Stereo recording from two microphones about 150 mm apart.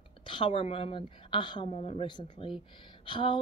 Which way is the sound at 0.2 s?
30° left (ahead or behind).